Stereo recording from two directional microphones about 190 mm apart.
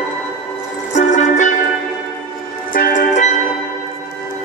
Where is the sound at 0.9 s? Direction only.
40° left (ahead or behind).